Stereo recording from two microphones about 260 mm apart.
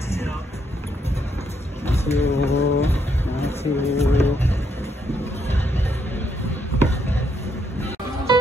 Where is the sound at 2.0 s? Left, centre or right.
Left.